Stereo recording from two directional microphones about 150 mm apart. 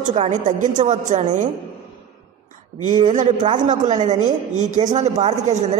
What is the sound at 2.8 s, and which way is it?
A man's voice, 55° right (ahead or behind).